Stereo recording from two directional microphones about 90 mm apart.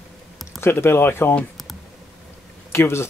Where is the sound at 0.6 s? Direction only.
25° left (ahead or behind).